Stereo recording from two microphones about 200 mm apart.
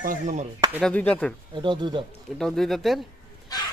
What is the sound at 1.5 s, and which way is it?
Speech, 25° right (ahead or behind).